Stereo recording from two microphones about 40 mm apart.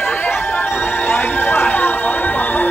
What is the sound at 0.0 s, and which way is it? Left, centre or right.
Music, left.